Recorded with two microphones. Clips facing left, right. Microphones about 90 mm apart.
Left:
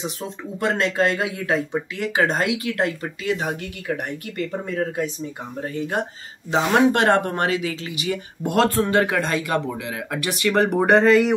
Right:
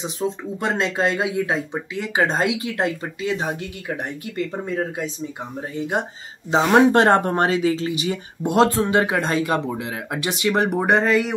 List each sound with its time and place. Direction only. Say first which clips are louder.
0.0 s speech: right 5 dB; 20° right (ahead or behind)
6.5 s speech: right 3 dB; 30° right (ahead or behind)
10.8 s speech: left 6 dB; 5° right (ahead or behind)